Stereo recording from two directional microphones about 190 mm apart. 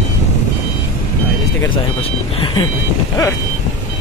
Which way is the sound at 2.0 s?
30° left (ahead or behind).